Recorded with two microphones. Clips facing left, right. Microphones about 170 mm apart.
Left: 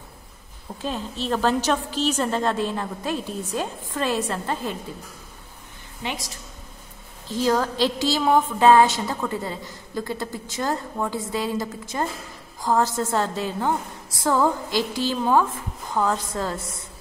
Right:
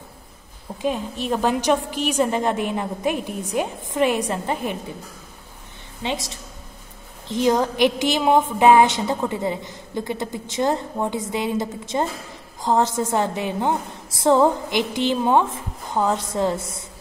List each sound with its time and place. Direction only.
0.8 s a woman's voice: 15° right (ahead or behind)
6.0 s a woman's voice: 25° right (ahead or behind)